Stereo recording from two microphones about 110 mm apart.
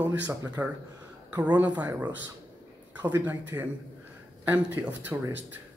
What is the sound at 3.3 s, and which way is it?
Speech, 15° right (ahead or behind).